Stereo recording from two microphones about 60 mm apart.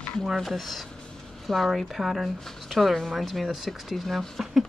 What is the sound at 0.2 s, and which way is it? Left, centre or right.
Speech, centre.